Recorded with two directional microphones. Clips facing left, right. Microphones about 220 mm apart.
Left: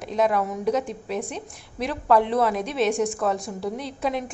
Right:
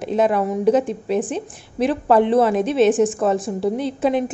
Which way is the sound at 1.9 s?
30° right (ahead or behind).